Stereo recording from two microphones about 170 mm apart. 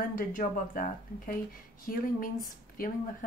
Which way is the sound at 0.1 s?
55° left (ahead or behind).